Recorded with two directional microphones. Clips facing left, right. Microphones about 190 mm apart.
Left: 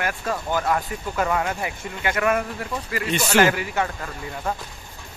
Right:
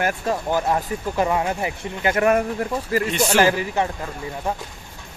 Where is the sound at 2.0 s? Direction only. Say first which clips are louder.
Right 4 dB; 40° right (ahead or behind).